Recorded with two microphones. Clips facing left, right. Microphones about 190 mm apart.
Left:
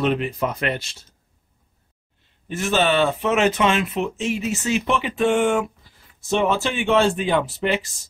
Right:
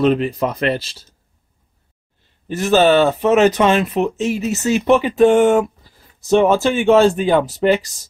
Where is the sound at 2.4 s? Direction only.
40° right (ahead or behind).